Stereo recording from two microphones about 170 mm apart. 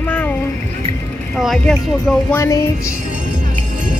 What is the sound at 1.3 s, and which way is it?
Speech, centre (ahead or behind).